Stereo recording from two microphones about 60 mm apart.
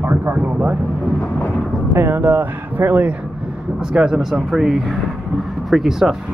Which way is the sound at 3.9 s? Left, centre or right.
Centre.